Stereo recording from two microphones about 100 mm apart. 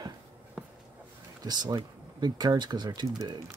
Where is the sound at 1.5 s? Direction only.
40° right (ahead or behind).